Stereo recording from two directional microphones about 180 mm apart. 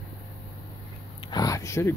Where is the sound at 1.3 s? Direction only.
20° left (ahead or behind).